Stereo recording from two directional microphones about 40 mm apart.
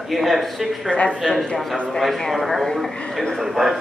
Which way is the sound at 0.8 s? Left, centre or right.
Left.